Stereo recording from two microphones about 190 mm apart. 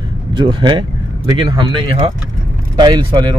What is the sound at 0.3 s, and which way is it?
Speech, 25° right (ahead or behind).